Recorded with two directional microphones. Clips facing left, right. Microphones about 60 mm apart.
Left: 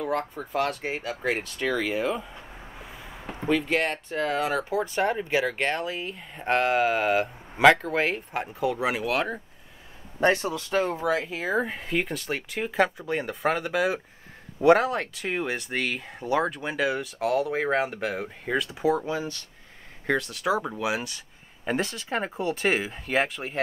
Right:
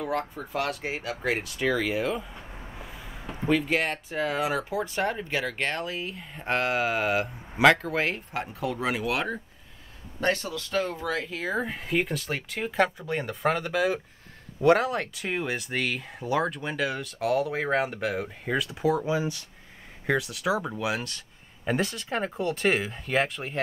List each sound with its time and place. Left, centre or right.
0.0 s speech: centre
2.9 s a sound: centre
3.4 s speech: centre
10.2 s speech: left; by 19.0 s centre
19.0 s speech: centre
20.1 s speech: centre